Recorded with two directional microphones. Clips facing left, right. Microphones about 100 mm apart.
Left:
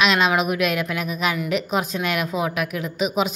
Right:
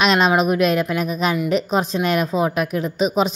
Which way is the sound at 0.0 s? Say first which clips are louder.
Right 3 dB; 35° right (ahead or behind).